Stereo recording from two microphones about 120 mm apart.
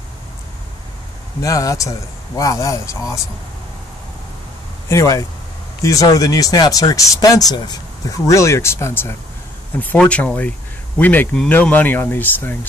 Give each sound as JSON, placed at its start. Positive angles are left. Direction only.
{"t": 1.4, "sound": "speech", "side_deg": 30}
{"t": 4.8, "sound": "speech", "side_deg": 25}